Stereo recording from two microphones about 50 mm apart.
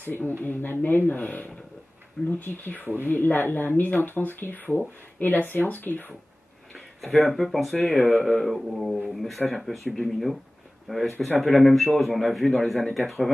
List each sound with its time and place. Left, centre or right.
0.0 s speech: left
7.2 s a man's voice: centre